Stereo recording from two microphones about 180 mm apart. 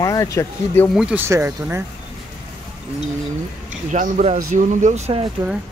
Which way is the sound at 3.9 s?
40° right (ahead or behind).